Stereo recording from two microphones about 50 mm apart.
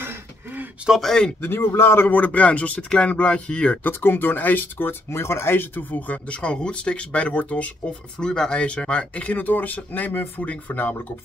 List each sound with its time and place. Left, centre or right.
0.0 s a sound: right
1.0 s speech: centre
1.4 s a man's voice: left
2.0 s speech: left
3.8 s speech: left
8.2 s speech: centre; by 11.0 s left